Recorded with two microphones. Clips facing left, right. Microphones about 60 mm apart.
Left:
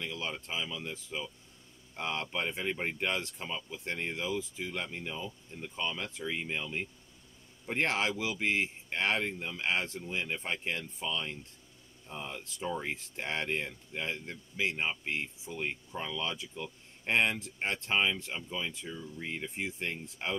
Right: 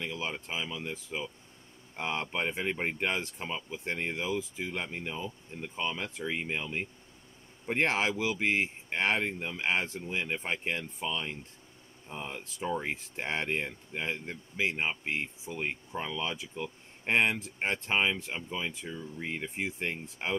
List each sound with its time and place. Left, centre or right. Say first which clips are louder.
0.0 s speech: right 2 dB; right
5.5 s speech: right 2 dB; right